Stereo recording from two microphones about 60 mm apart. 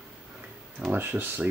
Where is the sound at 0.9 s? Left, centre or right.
Right.